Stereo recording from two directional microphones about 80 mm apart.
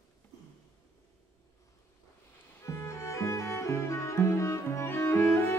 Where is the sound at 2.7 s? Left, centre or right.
Left.